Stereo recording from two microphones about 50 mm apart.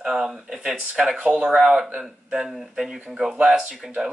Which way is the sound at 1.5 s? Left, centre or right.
Centre.